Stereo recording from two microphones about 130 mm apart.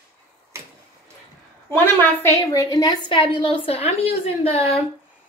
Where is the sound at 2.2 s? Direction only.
25° left (ahead or behind); by 4.8 s 50° left (ahead or behind).